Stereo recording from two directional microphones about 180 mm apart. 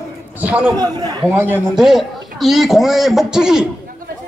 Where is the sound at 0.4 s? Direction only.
10° right (ahead or behind).